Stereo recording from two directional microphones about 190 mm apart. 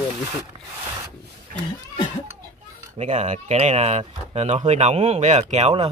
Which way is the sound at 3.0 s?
35° right (ahead or behind).